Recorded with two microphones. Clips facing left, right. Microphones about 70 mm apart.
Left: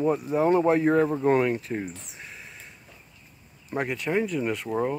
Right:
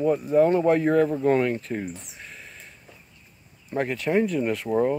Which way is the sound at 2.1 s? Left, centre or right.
Centre.